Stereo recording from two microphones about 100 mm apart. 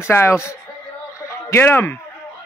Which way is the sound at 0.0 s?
25° left (ahead or behind).